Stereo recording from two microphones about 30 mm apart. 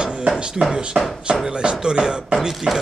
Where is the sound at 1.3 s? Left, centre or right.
Right.